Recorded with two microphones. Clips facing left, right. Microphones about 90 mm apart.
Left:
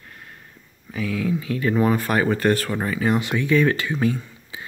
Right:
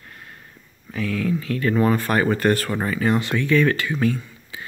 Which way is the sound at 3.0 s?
10° left (ahead or behind).